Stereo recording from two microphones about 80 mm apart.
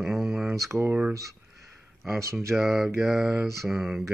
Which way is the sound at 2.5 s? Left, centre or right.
Centre.